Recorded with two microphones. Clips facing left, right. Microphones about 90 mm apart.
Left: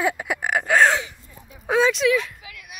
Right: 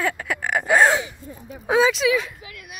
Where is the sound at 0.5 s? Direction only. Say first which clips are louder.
Right 1 dB; 5° right (ahead or behind).